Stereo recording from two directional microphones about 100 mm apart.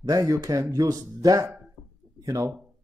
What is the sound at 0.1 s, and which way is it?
Speech, 40° right (ahead or behind).